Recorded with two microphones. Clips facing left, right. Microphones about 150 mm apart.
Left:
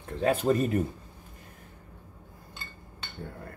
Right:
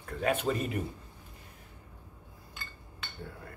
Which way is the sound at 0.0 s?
30° left (ahead or behind).